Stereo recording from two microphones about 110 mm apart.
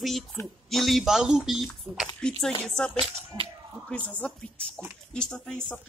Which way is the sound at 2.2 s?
10° left (ahead or behind).